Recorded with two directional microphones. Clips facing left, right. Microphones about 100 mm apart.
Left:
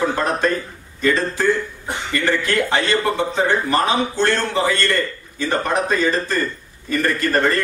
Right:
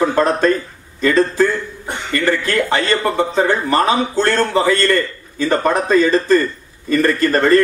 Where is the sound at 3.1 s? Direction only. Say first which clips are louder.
Right 3 dB; 50° right (ahead or behind).